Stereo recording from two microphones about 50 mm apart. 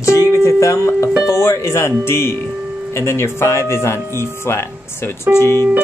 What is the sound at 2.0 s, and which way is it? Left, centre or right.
Speech, left.